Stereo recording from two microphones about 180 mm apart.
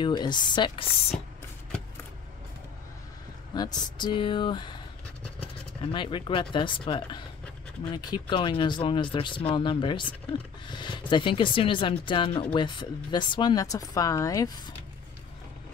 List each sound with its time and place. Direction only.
0.0 s speech: 25° left (ahead or behind)
3.5 s speech: 20° left (ahead or behind)
5.8 s speech: 30° left (ahead or behind)